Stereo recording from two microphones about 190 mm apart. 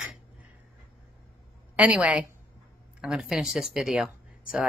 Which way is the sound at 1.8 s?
5° right (ahead or behind).